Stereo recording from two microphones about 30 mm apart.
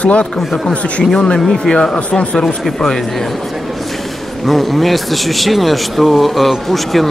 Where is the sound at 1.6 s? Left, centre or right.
Left.